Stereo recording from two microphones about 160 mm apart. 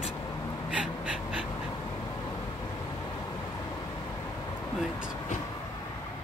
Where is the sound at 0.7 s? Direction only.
5° right (ahead or behind).